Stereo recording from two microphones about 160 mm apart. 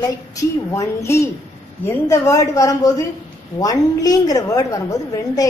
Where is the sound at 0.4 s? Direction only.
20° left (ahead or behind).